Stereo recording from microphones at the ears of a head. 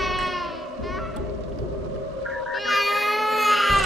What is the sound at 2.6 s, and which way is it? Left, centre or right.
Baby cry, centre.